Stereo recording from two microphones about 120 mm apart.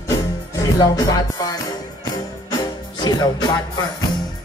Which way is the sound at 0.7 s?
35° left (ahead or behind).